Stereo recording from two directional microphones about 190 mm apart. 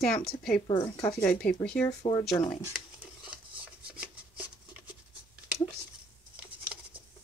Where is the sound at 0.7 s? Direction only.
20° left (ahead or behind).